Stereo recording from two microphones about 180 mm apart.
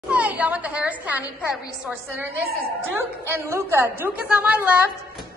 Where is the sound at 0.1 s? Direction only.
10° right (ahead or behind).